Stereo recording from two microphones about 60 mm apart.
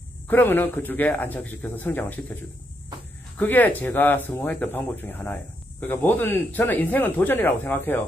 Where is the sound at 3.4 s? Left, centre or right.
Left.